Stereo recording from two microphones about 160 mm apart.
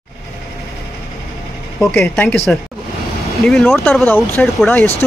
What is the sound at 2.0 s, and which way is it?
Speech, 5° left (ahead or behind).